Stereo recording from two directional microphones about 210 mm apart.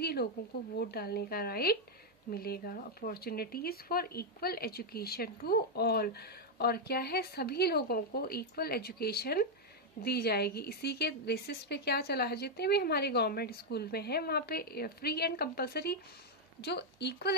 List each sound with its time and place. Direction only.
0.0 s speech: 50° left (ahead or behind)